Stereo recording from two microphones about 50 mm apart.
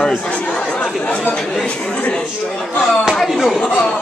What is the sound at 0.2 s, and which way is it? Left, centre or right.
Chatter, left.